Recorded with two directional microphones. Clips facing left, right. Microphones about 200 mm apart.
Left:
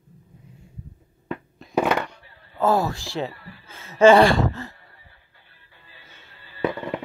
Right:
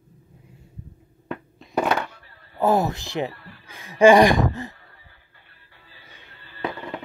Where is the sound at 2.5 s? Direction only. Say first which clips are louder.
Right 1 dB; 20° right (ahead or behind).